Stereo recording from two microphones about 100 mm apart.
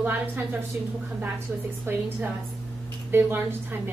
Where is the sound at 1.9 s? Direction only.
25° right (ahead or behind).